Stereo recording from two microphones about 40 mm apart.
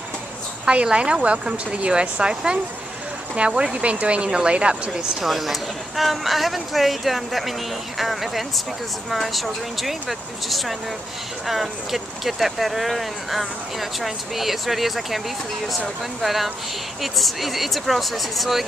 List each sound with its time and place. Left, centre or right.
0.9 s speech: right
5.2 s speech: centre